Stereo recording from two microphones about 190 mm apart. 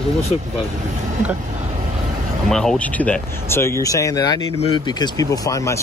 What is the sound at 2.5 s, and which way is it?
Speech, 5° left (ahead or behind).